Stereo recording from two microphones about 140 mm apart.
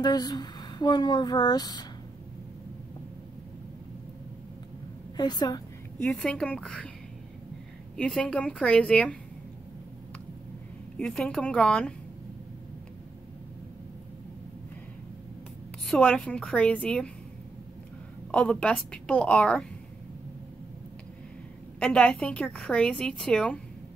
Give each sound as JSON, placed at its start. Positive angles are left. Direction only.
{"t": 0.0, "sound": "a sound", "side_deg": 30}
{"t": 5.1, "sound": "a woman's voice", "side_deg": 30}
{"t": 5.9, "sound": "a woman's voice", "side_deg": 5}
{"t": 8.0, "sound": "a woman's voice", "side_deg": 5}
{"t": 11.0, "sound": "a woman's voice", "side_deg": 5}
{"t": 15.9, "sound": "a woman's voice", "side_deg": 5}
{"t": 18.3, "sound": "a woman's voice", "side_deg": 5}
{"t": 21.7, "sound": "a woman's voice", "side_deg": 5}